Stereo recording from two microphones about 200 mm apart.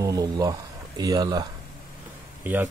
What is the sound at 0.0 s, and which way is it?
Speech, 15° right (ahead or behind).